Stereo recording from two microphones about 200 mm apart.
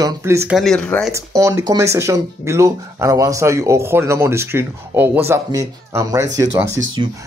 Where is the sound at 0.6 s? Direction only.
5° left (ahead or behind).